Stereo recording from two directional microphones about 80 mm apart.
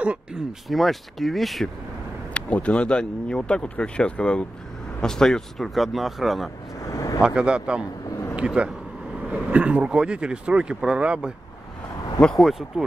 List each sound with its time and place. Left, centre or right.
0.0 s speech: centre
2.3 s speech: centre
6.8 s a sound: left
7.2 s speech: centre
12.4 s speech: centre